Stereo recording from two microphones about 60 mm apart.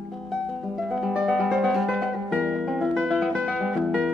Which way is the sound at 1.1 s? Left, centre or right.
Centre.